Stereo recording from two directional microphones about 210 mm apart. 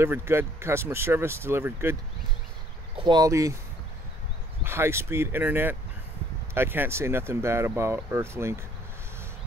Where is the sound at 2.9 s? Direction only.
20° right (ahead or behind).